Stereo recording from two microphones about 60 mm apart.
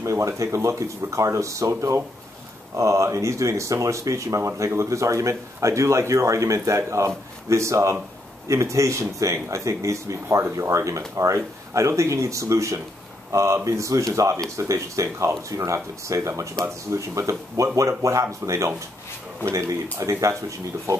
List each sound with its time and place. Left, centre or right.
0.0 s speech: right